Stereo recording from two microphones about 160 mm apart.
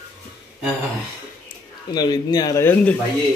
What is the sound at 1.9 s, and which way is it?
Speech, 25° left (ahead or behind).